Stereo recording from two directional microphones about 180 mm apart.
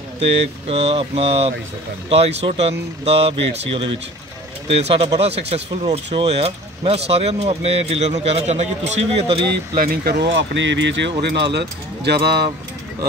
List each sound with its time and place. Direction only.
0.7 s speech: 35° right (ahead or behind)
9.8 s speech: 60° right (ahead or behind)